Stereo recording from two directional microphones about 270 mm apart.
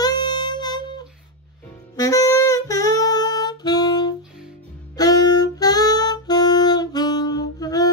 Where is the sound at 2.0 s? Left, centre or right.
Centre.